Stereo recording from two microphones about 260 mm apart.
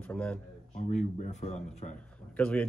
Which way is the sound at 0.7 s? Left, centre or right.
Left.